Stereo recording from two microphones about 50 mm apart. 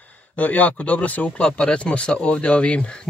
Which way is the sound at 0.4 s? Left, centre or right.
Left.